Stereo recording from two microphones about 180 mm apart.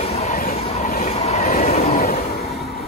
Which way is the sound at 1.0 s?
35° left (ahead or behind).